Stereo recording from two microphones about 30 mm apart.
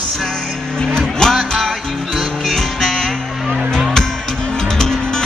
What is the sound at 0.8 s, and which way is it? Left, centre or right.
Music, left.